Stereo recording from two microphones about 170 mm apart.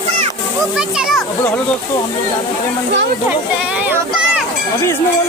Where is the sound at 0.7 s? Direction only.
5° right (ahead or behind).